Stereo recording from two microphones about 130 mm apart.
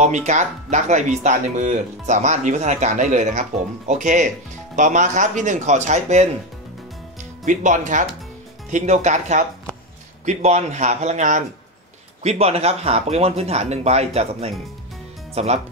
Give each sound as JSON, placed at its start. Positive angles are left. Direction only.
{"t": 0.0, "sound": "speech", "side_deg": -65}
{"t": 7.4, "sound": "a man's voice", "side_deg": -75}
{"t": 12.2, "sound": "speech", "side_deg": -55}